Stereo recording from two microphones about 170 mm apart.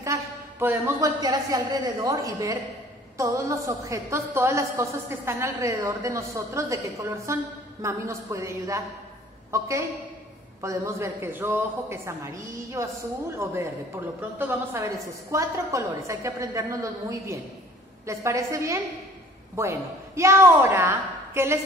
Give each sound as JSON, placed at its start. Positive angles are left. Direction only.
{"t": 0.0, "sound": "a woman's voice", "side_deg": -15}